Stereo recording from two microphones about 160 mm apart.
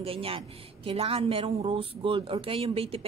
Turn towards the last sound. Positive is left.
turn(degrees=-35)  # may be behind; listen again after turning